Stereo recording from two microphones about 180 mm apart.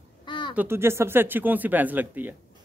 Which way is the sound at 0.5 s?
10° right (ahead or behind).